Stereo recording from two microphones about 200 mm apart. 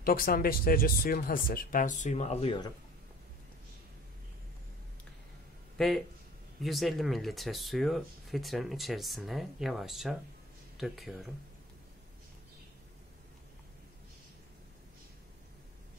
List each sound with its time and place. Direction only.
0.0 s speech: 45° left (ahead or behind); by 2.7 s 25° left (ahead or behind)
5.8 s speech: centre (ahead or behind)